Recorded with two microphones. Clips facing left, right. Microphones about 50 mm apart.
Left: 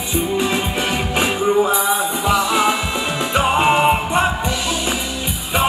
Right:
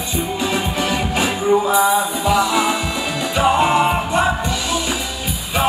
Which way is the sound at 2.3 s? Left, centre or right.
Left.